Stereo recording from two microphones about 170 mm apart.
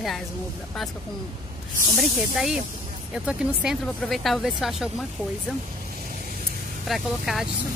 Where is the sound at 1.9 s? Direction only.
5° right (ahead or behind).